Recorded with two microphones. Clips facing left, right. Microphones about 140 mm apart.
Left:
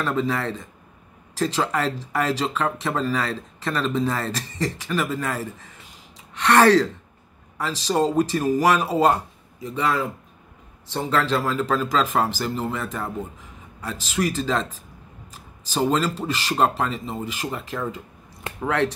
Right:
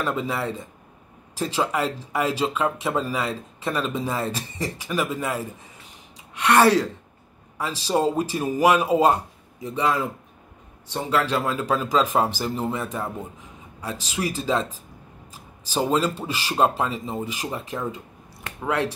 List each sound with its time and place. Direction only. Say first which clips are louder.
0.0 s speech: left 2 dB; 10° right (ahead or behind)